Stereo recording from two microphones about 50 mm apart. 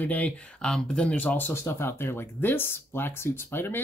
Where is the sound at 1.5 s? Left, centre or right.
Left.